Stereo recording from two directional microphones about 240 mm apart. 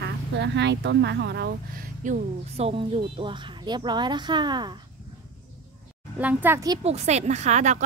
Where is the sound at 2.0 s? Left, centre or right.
Right.